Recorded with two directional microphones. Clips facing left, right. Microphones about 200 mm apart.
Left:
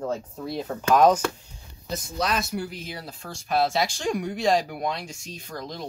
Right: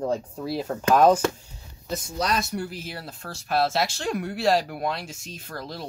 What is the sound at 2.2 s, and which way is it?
Speech, centre (ahead or behind).